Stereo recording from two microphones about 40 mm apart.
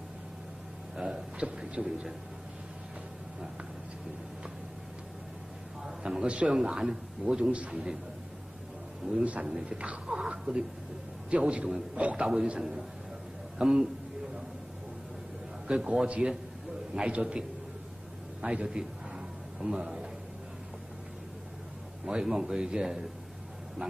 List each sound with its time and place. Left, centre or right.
0.9 s a sound: centre
5.9 s a sound: centre
6.2 s a man's voice: right
6.5 s a man's voice: centre
9.1 s a man's voice: right
10.0 s a sound: right
11.2 s a man's voice: right
12.5 s a man's voice: centre
15.6 s a man's voice: right
22.0 s a man's voice: centre